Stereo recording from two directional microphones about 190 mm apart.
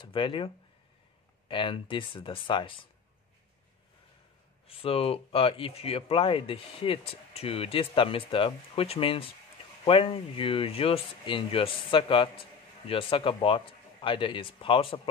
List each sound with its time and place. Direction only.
0.0 s speech: 25° left (ahead or behind)
1.5 s speech: 25° left (ahead or behind)
4.6 s speech: 30° left (ahead or behind)